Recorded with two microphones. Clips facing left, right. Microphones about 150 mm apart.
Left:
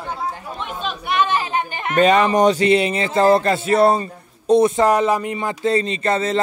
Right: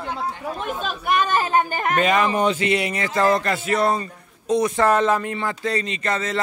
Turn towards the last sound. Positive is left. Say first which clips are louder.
# left 5 dB
turn(degrees=30)  # may be behind; listen again after turning